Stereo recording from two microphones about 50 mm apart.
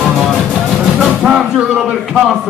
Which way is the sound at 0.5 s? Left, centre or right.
Centre.